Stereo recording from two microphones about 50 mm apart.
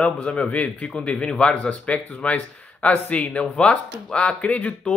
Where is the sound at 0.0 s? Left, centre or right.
Left.